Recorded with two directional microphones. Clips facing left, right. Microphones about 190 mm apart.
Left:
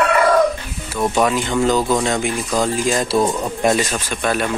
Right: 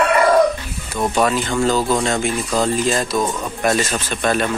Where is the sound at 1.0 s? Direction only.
Centre (ahead or behind).